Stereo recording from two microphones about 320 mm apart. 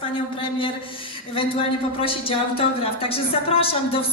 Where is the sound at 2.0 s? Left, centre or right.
Centre.